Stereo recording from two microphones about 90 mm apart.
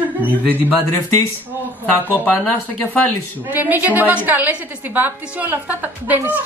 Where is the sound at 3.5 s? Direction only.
20° right (ahead or behind).